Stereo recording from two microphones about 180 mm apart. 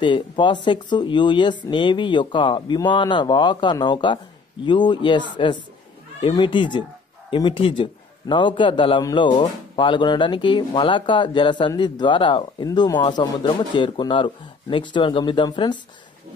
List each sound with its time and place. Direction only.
0.0 s speech: 25° left (ahead or behind)
6.2 s speech: 25° left (ahead or behind)